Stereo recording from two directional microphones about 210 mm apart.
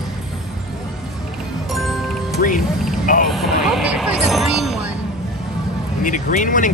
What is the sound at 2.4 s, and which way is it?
Speech, 40° left (ahead or behind).